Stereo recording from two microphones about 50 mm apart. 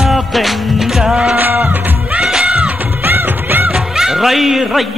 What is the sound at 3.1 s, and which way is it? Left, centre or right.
Music, right.